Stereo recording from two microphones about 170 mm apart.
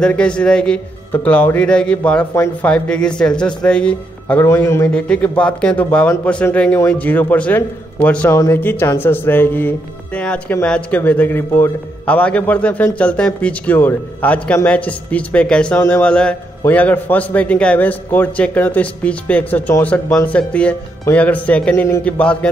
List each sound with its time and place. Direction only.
0.0 s a man's voice: 5° left (ahead or behind)